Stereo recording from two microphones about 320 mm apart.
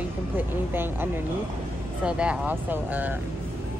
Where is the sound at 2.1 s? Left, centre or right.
Centre.